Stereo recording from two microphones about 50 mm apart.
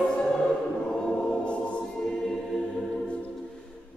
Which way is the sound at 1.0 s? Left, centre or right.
Centre.